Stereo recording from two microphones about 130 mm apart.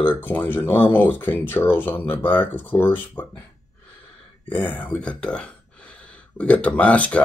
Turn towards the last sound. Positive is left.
turn(degrees=10)  # may be behind; listen again after turning